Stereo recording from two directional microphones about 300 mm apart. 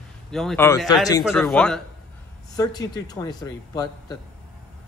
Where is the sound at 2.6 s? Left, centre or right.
Centre.